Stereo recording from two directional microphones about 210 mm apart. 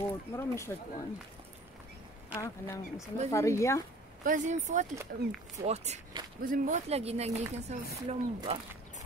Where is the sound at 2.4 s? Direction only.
15° left (ahead or behind).